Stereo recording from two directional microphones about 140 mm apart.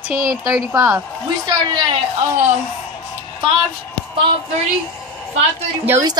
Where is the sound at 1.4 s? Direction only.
35° right (ahead or behind).